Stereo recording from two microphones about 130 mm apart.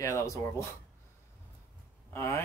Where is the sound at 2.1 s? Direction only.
20° left (ahead or behind).